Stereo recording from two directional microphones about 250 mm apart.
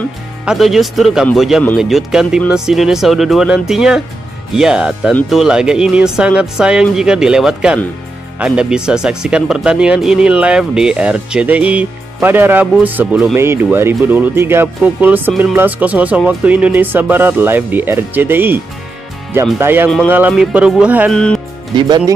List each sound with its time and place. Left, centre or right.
0.5 s speech: centre
21.7 s speech: centre